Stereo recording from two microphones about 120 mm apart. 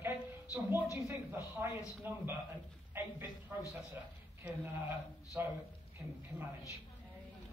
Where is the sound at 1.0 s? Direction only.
20° right (ahead or behind).